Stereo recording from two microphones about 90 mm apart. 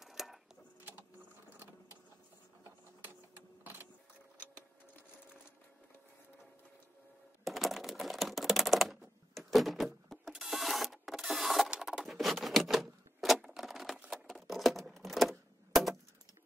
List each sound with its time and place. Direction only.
0.0 s a sound: 5° right (ahead or behind)
3.3 s sewing machine: 20° right (ahead or behind)
7.4 s typing: centre (ahead or behind)
9.3 s a sound: centre (ahead or behind)
12.0 s typewriter: centre (ahead or behind)
14.1 s typing: centre (ahead or behind)